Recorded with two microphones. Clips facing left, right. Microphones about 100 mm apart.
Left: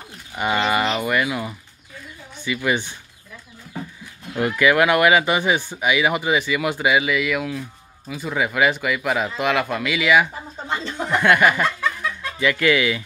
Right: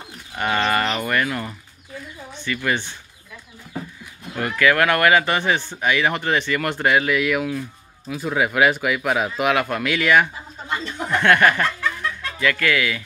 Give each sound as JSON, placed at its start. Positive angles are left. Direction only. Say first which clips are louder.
{"t": 0.4, "sound": "speech", "louder": "even", "side_deg": 10}
{"t": 4.4, "sound": "speech", "louder": "left 1 dB", "side_deg": 15}
{"t": 10.7, "sound": "speech", "louder": "left 1 dB", "side_deg": 25}
{"t": 11.1, "sound": "chuckle", "louder": "even", "side_deg": 10}
{"t": 12.4, "sound": "speech", "louder": "left 2 dB", "side_deg": 20}